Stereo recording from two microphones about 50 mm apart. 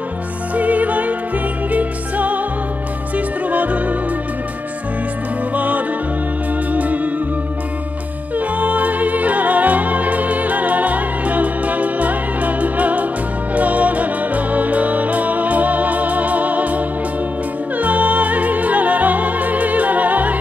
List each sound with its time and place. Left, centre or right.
0.6 s music: right
5.6 s music: right
8.4 s music: right